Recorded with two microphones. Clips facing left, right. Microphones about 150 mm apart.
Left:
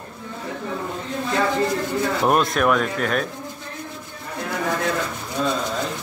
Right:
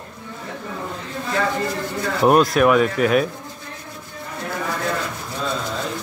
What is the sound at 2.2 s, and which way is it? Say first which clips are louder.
Speech: right 6 dB; centre (ahead or behind).